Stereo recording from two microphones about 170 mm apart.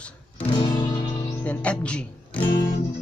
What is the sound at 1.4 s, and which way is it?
Speech, 5° left (ahead or behind).